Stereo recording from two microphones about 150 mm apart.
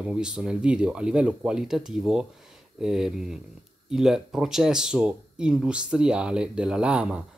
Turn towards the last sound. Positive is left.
turn(degrees=-5)  # may be behind; listen again after turning